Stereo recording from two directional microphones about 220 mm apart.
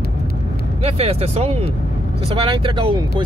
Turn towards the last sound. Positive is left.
turn(degrees=-20)  # may be behind; listen again after turning